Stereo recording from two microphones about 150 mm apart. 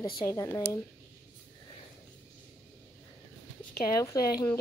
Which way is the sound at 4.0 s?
20° left (ahead or behind).